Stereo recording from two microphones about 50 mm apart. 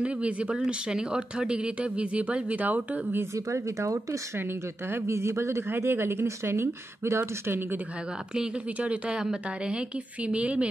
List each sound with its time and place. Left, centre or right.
0.0 s speech: right
3.3 s speech: right
4.4 s speech: right
5.0 s speech: right
8.7 s speech: right
9.2 s speech: centre